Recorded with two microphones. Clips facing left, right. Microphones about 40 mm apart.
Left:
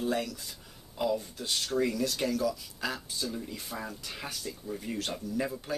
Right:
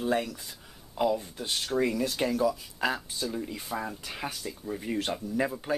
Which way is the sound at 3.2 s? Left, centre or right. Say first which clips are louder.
Right 3 dB; centre.